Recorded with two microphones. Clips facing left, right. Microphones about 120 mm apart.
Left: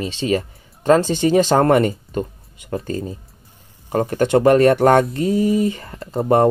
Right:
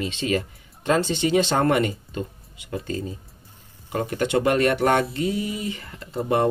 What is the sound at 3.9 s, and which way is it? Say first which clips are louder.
Speech: left 6 dB; 45° left (ahead or behind).